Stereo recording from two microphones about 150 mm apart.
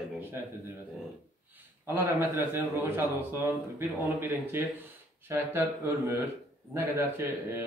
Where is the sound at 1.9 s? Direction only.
15° right (ahead or behind).